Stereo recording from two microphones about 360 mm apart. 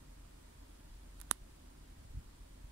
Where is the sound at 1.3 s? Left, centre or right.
Right.